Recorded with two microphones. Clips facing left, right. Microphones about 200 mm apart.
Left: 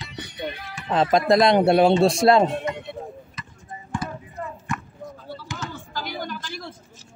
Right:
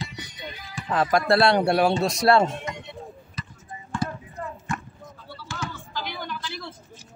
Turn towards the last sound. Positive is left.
turn(degrees=45)  # may be behind; listen again after turning